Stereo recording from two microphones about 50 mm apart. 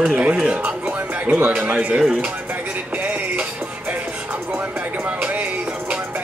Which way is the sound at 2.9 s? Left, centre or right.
Right.